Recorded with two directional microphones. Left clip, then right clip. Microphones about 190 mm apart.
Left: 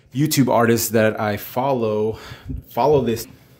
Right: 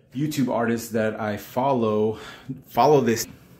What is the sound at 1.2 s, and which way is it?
Speech, 25° left (ahead or behind).